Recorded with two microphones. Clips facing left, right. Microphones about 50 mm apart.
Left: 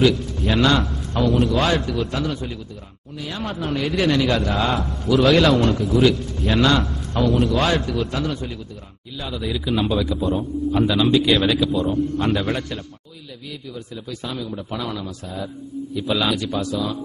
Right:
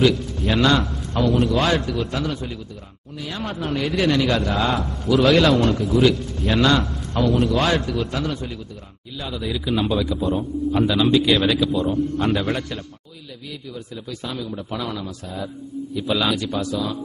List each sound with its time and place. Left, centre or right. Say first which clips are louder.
0.0 s a man's voice: even; centre